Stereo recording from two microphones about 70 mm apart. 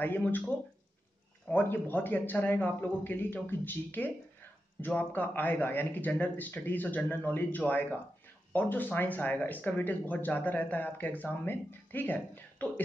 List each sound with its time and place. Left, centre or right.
0.0 s speech: left